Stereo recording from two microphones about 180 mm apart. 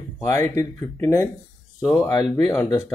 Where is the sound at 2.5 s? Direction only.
15° left (ahead or behind).